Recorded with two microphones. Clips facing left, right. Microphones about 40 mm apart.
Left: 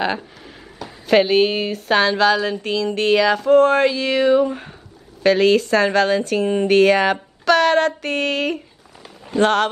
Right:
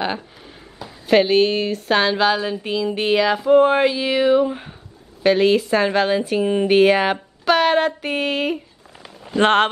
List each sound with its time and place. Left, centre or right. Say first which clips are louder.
1.0 s a woman's voice: even; centre
9.4 s speech: right 1 dB; right